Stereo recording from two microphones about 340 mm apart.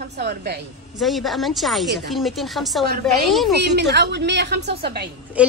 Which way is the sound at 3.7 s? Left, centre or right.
Right.